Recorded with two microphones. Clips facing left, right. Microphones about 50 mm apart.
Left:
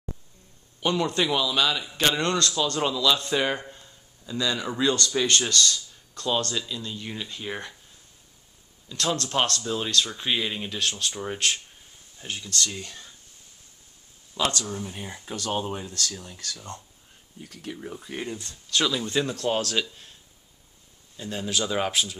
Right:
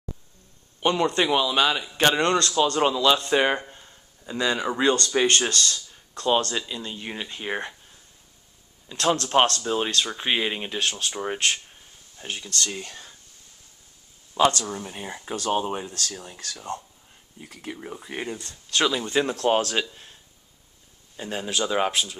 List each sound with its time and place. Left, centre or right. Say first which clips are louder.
0.7 s speech: right 3 dB; right
8.8 s speech: right 4 dB; right
14.4 s speech: right 6 dB; right
17.5 s speech: right 1 dB; right
21.2 s speech: right 2 dB; right
21.5 s speech: right 2 dB; centre